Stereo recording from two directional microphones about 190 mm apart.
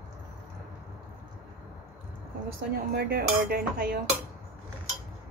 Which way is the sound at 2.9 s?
55° right (ahead or behind).